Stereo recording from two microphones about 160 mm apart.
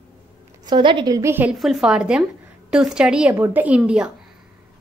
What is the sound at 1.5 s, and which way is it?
A woman's voice, 5° right (ahead or behind).